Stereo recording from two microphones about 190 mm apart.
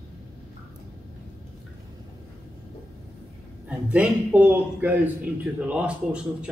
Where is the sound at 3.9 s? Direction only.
5° right (ahead or behind).